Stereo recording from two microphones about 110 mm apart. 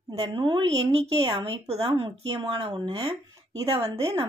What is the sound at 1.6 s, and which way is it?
Speech, 60° right (ahead or behind).